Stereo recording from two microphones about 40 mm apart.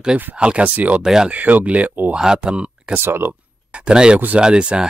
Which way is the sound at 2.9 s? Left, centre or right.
Right.